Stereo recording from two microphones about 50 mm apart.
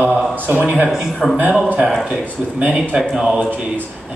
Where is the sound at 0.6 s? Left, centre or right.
Right.